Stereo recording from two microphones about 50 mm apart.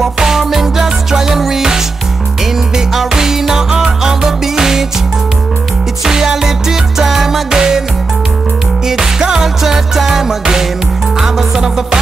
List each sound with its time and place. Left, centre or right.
0.0 s music: centre
2.9 s music: centre
6.0 s music: centre
8.8 s music: centre